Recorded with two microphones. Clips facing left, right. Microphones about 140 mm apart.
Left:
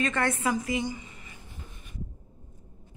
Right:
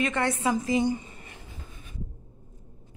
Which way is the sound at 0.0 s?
15° right (ahead or behind).